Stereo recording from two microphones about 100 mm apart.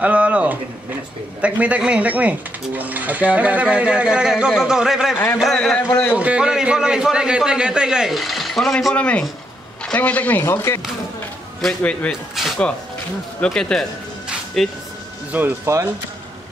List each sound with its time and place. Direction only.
0.0 s speech: 15° right (ahead or behind); by 5.8 s 5° left (ahead or behind)
6.1 s speech: 10° right (ahead or behind)
8.9 s speech: 10° left (ahead or behind)
11.6 s speech: 10° left (ahead or behind)
12.1 s speech: centre (ahead or behind)
15.3 s speech: 25° right (ahead or behind)